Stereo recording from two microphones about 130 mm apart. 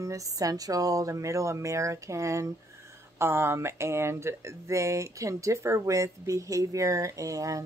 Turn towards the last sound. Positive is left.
turn(degrees=-25)  # may be behind; listen again after turning